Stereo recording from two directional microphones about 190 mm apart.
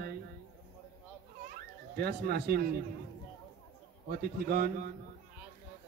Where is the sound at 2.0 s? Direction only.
55° right (ahead or behind).